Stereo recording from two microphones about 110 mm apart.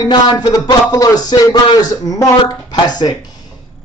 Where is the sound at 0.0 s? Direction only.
40° left (ahead or behind).